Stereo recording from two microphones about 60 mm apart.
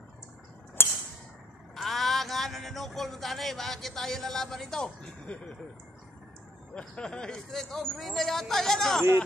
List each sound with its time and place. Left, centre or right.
1.8 s speech: centre
5.0 s speech: centre
6.7 s speech: centre